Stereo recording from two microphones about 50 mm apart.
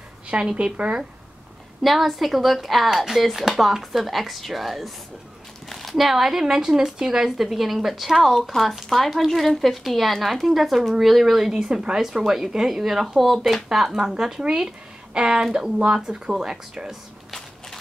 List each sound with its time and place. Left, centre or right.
0.3 s a woman's voice: centre
1.8 s speech: centre